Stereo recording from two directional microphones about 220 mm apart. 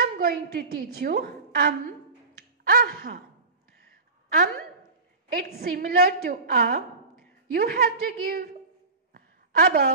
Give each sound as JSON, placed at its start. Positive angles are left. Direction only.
{"t": 0.0, "sound": "a woman's voice", "side_deg": -45}
{"t": 5.3, "sound": "a woman's voice", "side_deg": -45}
{"t": 9.1, "sound": "a sound", "side_deg": -40}